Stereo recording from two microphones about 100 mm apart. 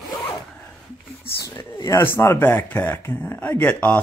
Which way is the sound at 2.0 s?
20° left (ahead or behind).